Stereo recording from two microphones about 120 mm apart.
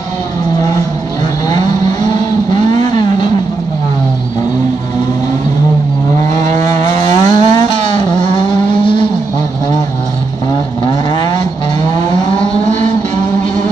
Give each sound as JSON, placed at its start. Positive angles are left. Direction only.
{"t": 1.5, "sound": "vehicle", "side_deg": 35}
{"t": 6.4, "sound": "vehicle", "side_deg": 30}
{"t": 10.9, "sound": "vehicle", "side_deg": 40}